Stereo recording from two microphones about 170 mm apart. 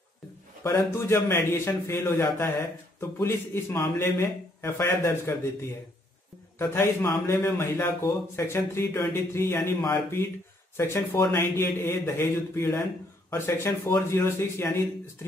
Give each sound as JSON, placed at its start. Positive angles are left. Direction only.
{"t": 0.7, "sound": "speech", "side_deg": 20}
{"t": 6.6, "sound": "speech", "side_deg": 15}